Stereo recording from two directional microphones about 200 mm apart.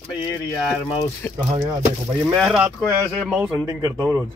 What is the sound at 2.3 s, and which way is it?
A man's voice, centre (ahead or behind).